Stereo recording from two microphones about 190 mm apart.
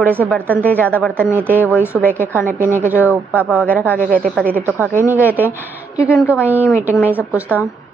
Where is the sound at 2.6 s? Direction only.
40° right (ahead or behind).